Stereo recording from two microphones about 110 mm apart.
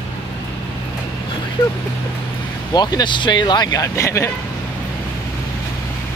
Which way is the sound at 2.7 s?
40° left (ahead or behind).